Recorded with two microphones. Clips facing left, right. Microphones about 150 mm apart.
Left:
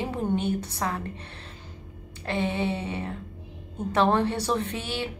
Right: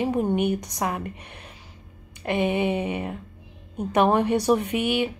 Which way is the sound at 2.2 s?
15° right (ahead or behind).